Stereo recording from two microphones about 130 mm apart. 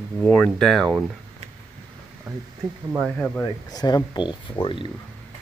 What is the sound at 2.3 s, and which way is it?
Speech, 25° right (ahead or behind).